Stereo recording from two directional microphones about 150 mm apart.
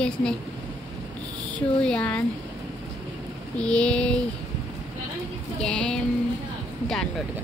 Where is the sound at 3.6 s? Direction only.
5° left (ahead or behind).